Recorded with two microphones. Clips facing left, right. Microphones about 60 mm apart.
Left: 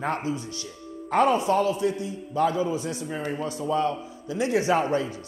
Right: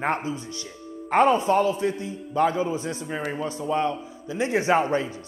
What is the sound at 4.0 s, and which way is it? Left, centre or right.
A man's voice, right.